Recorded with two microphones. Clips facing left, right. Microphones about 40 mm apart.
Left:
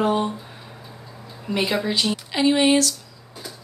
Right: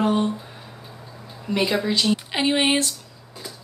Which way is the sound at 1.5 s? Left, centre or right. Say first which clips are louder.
Right 1 dB; centre.